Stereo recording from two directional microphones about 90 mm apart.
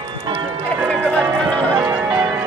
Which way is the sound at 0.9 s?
15° left (ahead or behind).